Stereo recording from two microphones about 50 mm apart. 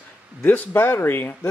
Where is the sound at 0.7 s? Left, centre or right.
Left.